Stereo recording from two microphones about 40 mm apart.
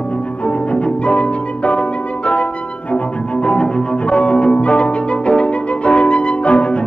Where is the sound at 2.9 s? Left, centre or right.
Left.